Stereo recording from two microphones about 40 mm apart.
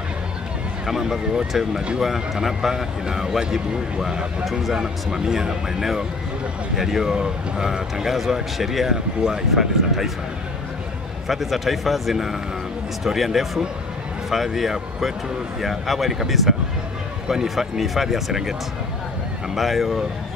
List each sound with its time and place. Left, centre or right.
0.8 s speech: centre
8.1 s speech: centre
11.2 s speech: centre
19.5 s speech: centre